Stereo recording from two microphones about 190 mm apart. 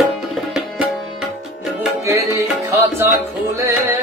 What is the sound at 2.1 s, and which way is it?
Music, 15° right (ahead or behind).